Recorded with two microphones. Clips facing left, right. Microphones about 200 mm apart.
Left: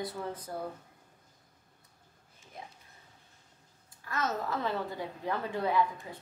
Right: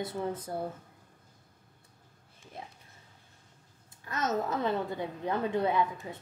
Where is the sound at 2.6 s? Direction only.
25° right (ahead or behind).